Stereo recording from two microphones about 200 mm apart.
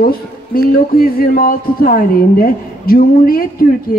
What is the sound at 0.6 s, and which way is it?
A woman's voice, 45° left (ahead or behind).